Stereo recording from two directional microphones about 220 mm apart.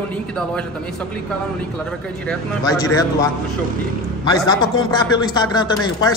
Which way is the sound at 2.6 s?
15° left (ahead or behind).